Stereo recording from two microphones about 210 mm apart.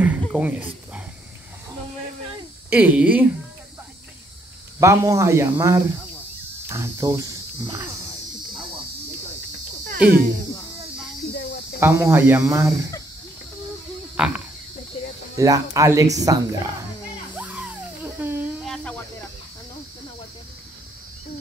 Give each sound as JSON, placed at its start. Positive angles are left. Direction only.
{"t": 0.2, "sound": "speech", "side_deg": -5}
{"t": 2.7, "sound": "speech", "side_deg": -5}
{"t": 4.7, "sound": "speech", "side_deg": -15}
{"t": 9.9, "sound": "speech", "side_deg": -45}
{"t": 11.8, "sound": "speech", "side_deg": -10}
{"t": 14.2, "sound": "speech", "side_deg": -5}
{"t": 15.3, "sound": "speech", "side_deg": -15}
{"t": 17.4, "sound": "music", "side_deg": -5}